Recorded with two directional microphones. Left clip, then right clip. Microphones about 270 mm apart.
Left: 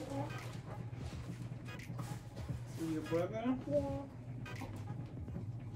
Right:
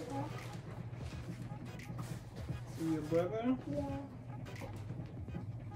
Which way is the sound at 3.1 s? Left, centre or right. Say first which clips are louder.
Right 3 dB; centre.